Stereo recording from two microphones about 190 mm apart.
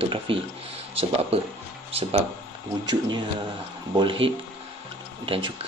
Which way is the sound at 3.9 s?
25° right (ahead or behind).